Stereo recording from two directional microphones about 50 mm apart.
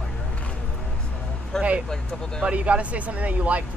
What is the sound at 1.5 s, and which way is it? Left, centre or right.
Speech, centre.